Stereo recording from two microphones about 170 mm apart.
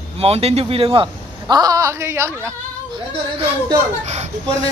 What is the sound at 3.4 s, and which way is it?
Speech, 35° right (ahead or behind).